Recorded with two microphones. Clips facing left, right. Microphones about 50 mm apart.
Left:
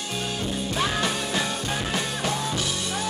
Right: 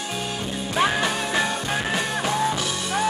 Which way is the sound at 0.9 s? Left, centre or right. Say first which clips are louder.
Right 3 dB; centre.